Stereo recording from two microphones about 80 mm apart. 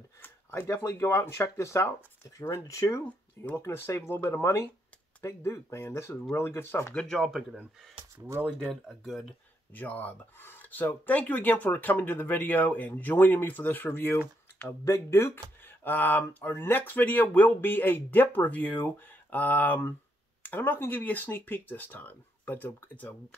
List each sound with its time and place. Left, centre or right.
0.2 s speech: left
3.1 s speech: left
3.6 s speech: left
7.0 s speech: centre
8.8 s speech: centre
9.8 s speech: left